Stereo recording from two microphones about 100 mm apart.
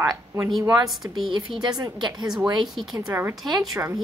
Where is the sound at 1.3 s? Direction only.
50° right (ahead or behind).